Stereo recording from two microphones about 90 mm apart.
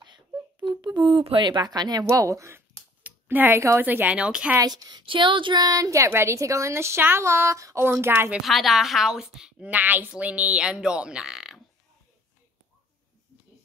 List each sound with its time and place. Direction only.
0.0 s speech: 60° right (ahead or behind); by 2.6 s 35° right (ahead or behind)
3.0 s speech: 20° right (ahead or behind)
4.6 s a woman's voice: 50° right (ahead or behind)
5.0 s a woman's voice: 70° right (ahead or behind); by 8.3 s 25° right (ahead or behind)
8.3 s a woman's voice: centre (ahead or behind)
9.7 s speech: 20° right (ahead or behind)